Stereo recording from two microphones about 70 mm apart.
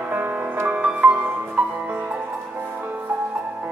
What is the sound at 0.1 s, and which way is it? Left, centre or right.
Music, right.